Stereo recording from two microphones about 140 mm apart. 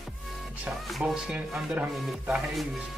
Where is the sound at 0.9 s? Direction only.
Centre (ahead or behind).